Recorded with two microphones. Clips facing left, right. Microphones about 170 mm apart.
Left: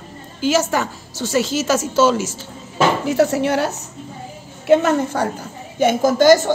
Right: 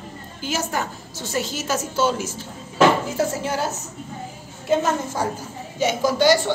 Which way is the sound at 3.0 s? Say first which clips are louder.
Left 7 dB; 70° left (ahead or behind).